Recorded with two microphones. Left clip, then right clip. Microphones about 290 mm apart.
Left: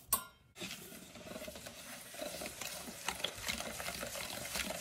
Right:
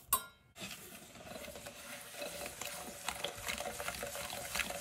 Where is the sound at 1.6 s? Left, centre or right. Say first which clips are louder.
Right 1 dB; centre.